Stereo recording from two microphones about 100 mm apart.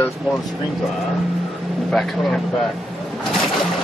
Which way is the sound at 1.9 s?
5° left (ahead or behind).